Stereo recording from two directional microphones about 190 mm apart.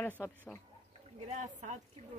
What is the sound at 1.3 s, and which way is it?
Speech, 40° right (ahead or behind).